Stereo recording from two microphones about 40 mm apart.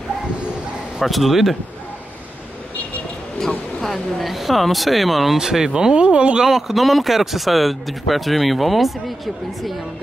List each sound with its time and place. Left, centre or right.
0.9 s speech: centre
3.3 s speech: centre; by 6.4 s right
6.4 s speech: centre